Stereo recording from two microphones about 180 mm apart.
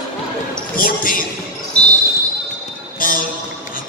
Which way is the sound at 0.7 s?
50° left (ahead or behind).